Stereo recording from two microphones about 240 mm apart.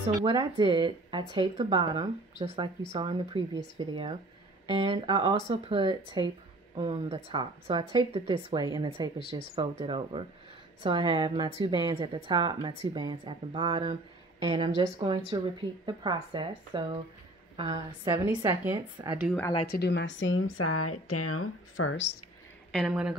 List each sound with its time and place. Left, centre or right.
0.2 s a woman's voice: centre
19.7 s a woman's voice: left
22.8 s speech: centre